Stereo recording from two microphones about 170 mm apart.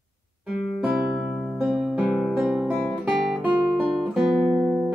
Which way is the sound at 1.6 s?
Centre (ahead or behind).